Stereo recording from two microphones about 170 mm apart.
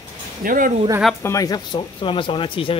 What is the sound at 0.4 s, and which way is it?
Speech, 55° right (ahead or behind).